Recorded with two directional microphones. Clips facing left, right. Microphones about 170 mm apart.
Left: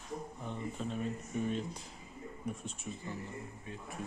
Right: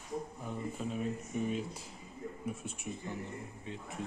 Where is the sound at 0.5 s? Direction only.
5° right (ahead or behind).